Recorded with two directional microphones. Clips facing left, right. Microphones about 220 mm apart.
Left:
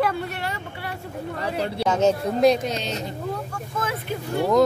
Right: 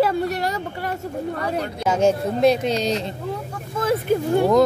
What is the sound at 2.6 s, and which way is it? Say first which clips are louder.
Speech: right 6 dB; 35° right (ahead or behind).